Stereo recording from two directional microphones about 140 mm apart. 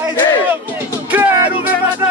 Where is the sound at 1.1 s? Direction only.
15° right (ahead or behind).